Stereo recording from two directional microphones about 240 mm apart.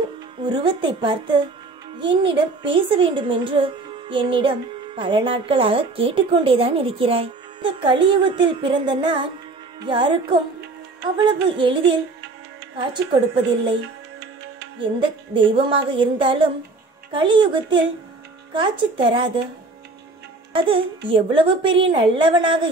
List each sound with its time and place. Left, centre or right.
0.4 s a child's voice: centre
11.2 s a child's voice: centre
12.7 s a child's voice: centre
15.3 s a child's voice: right
20.5 s a child's voice: right